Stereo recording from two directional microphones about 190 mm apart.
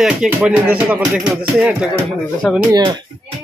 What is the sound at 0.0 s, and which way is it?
Speech, 5° right (ahead or behind).